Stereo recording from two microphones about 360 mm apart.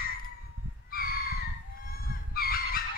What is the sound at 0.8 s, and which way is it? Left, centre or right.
Fowl, left.